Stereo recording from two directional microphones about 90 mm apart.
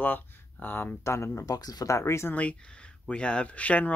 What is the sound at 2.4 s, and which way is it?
Speech, 10° left (ahead or behind).